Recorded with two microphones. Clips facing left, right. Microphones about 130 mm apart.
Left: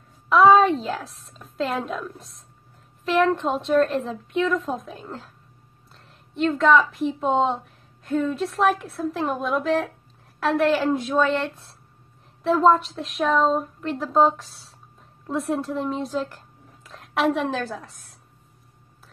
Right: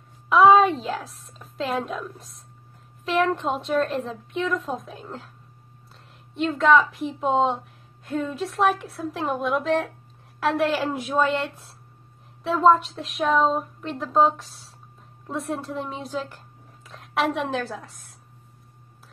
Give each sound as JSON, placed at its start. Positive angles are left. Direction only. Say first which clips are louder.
{"t": 0.3, "sound": "a woman's voice", "louder": "even", "side_deg": 0}
{"t": 6.3, "sound": "a woman's voice", "louder": "left 1 dB", "side_deg": 0}